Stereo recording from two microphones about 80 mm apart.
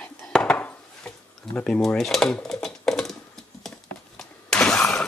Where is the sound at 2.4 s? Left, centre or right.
Centre.